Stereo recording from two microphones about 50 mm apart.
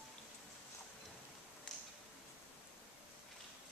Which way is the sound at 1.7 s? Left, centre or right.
Centre.